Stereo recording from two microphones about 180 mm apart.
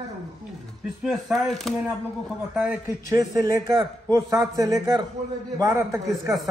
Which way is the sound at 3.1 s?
20° right (ahead or behind).